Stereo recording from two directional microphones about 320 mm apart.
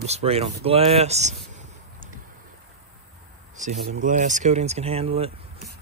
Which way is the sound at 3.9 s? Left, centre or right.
Right.